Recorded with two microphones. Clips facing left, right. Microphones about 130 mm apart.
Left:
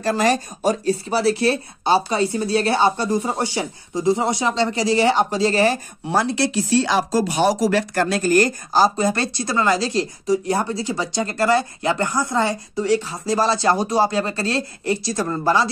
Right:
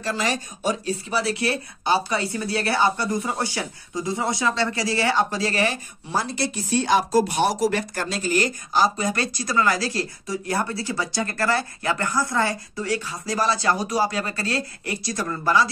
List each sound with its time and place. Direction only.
0.0 s speech: 45° left (ahead or behind)
6.0 s speech: 70° left (ahead or behind); by 15.7 s 30° left (ahead or behind)